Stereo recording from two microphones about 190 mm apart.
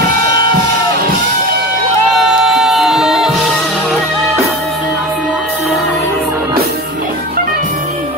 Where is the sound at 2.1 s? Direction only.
Centre (ahead or behind).